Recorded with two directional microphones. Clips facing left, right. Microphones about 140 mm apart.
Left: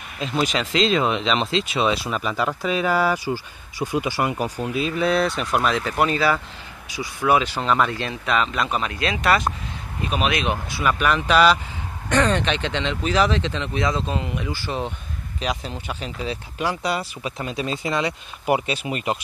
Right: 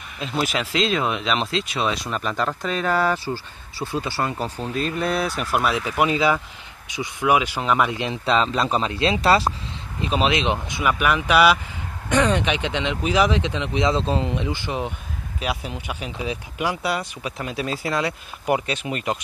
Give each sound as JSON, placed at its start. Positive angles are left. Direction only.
{"t": 0.2, "sound": "speech", "side_deg": 0}
{"t": 8.1, "sound": "speech", "side_deg": -30}
{"t": 16.9, "sound": "speech", "side_deg": 0}